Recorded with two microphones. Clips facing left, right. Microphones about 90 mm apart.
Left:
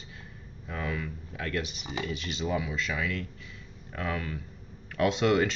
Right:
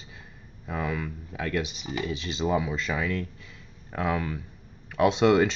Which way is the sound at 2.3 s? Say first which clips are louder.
Right 5 dB; 25° right (ahead or behind).